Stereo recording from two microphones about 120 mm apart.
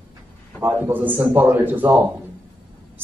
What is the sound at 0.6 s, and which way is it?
A man's voice, 20° right (ahead or behind).